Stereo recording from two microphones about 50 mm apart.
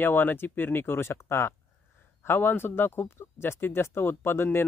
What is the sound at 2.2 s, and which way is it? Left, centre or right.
Speech, left.